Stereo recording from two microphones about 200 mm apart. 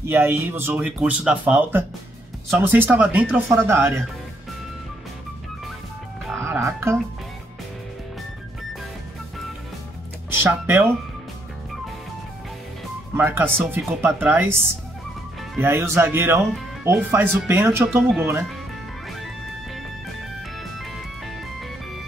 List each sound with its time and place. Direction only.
0.0 s speech: 10° right (ahead or behind)
6.4 s music: 15° right (ahead or behind)
10.4 s speech: 10° right (ahead or behind)
13.1 s speech: 10° right (ahead or behind)